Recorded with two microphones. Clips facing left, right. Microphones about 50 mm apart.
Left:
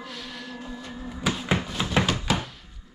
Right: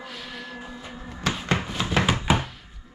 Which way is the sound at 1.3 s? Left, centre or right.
Centre.